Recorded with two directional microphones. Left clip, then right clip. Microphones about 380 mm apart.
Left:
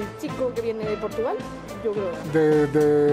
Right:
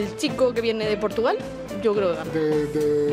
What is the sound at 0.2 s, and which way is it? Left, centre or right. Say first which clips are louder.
Music: right 5 dB; right.